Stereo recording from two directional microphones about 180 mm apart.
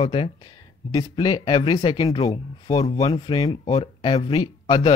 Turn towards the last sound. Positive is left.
turn(degrees=25)  # may be behind; listen again after turning